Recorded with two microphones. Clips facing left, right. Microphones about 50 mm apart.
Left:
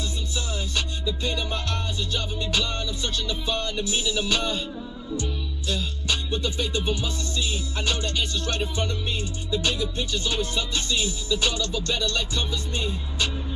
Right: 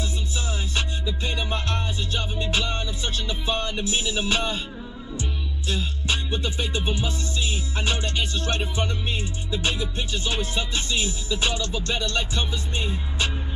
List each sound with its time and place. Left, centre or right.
0.7 s music: right